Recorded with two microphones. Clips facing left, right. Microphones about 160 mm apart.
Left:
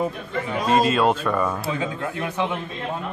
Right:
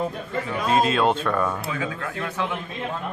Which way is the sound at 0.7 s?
5° left (ahead or behind).